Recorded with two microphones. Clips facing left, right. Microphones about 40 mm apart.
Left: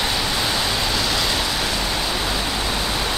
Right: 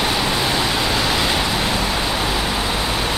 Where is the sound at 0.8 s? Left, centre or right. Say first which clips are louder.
Right 3 dB; right.